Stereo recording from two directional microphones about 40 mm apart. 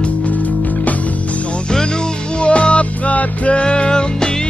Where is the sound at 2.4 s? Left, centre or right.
Left.